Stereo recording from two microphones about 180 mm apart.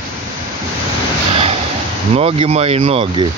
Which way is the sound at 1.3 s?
35° right (ahead or behind).